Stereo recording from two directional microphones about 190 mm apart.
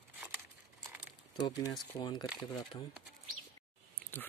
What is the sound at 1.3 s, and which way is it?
Speech, 20° left (ahead or behind).